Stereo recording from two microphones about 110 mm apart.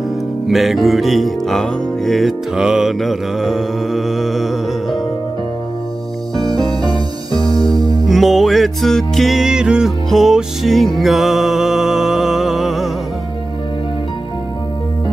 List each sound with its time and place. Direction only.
0.5 s music: centre (ahead or behind)
7.5 s music: 35° right (ahead or behind)
8.1 s music: centre (ahead or behind)